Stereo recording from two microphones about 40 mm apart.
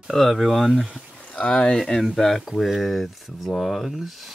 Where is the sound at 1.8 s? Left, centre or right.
Centre.